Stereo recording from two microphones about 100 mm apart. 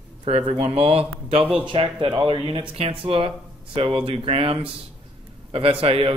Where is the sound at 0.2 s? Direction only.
90° right.